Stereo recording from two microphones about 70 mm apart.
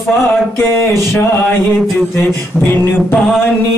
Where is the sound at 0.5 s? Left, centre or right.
Left.